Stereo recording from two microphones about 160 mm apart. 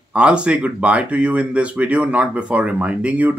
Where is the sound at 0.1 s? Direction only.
5° right (ahead or behind).